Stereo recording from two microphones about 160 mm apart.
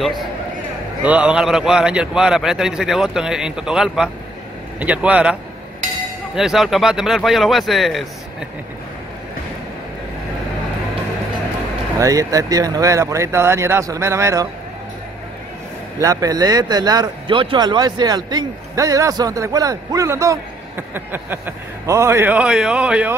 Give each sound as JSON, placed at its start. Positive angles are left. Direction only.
{"t": 1.0, "sound": "a man's voice", "side_deg": -5}
{"t": 12.0, "sound": "speech", "side_deg": -20}
{"t": 16.0, "sound": "speech", "side_deg": -20}